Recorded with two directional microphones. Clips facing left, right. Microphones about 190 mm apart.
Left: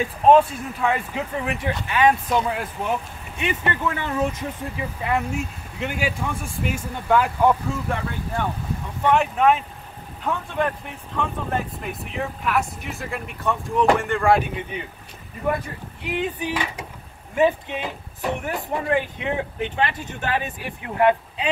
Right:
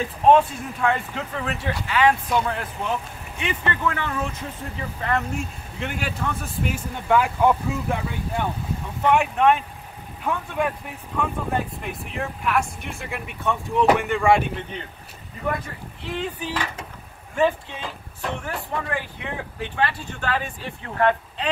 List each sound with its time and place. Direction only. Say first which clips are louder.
0.3 s speech: left 1 dB; 5° left (ahead or behind)
2.2 s speech: left 1 dB; 10° left (ahead or behind)
14.7 s speech: left 3 dB; 10° left (ahead or behind)
16.0 s speech: left 3 dB; 15° left (ahead or behind)